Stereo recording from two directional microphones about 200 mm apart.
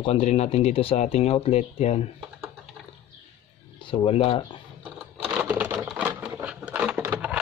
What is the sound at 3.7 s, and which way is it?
Speech, 25° left (ahead or behind).